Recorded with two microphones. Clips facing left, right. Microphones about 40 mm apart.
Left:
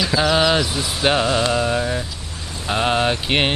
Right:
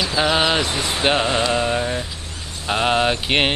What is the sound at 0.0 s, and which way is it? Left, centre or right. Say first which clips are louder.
Mantra: left 1 dB; centre.